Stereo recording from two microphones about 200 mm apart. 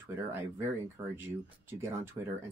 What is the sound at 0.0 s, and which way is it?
Speech, 10° right (ahead or behind).